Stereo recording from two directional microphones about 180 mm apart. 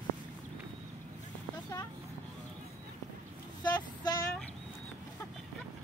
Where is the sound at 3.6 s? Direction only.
20° left (ahead or behind).